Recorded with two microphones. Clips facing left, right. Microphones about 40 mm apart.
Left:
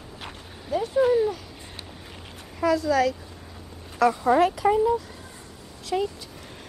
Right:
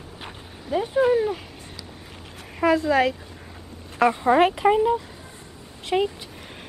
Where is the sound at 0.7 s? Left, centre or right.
Right.